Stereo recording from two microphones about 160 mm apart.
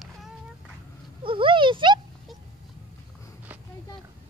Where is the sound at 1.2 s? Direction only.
30° right (ahead or behind).